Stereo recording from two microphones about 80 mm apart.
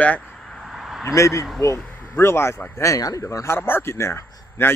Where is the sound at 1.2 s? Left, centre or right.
Left.